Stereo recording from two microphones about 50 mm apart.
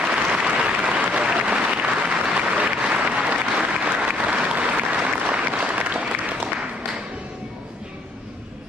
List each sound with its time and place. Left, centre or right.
0.0 s applause: centre